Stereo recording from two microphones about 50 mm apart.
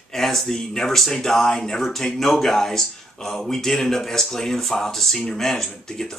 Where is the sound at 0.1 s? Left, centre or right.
Centre.